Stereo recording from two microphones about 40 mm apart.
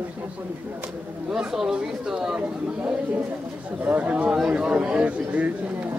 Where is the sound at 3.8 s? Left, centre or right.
Right.